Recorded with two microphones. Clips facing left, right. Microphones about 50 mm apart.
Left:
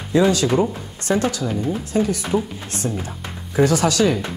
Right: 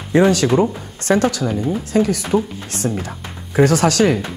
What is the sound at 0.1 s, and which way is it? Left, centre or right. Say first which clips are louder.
Speech: right 3 dB; right.